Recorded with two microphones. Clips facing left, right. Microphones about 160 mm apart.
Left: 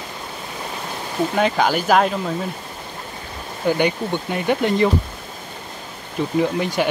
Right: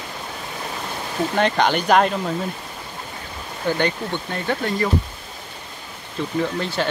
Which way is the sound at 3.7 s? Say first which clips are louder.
Left 3 dB; 10° left (ahead or behind).